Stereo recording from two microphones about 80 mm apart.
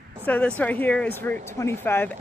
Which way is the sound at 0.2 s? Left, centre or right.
Centre.